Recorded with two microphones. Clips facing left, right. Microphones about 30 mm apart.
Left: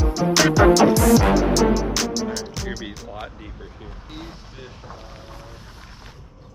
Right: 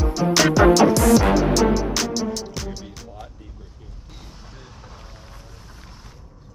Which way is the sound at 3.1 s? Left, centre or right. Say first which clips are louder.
Left 6 dB; left.